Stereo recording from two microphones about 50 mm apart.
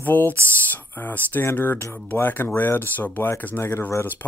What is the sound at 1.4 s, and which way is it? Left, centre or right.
Speech, left.